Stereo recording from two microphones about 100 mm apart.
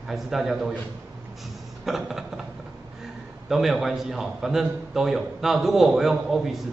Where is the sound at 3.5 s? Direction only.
Centre (ahead or behind).